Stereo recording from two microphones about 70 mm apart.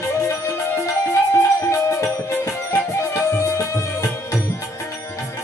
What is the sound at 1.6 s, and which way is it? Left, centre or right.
Music, left.